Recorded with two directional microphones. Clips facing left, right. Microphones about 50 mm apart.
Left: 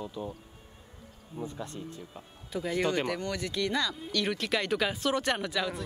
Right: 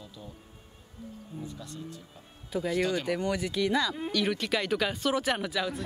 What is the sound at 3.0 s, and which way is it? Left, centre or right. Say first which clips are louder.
Speech: right 3 dB; centre.